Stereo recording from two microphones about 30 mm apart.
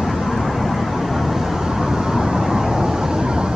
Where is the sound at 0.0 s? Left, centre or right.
Centre.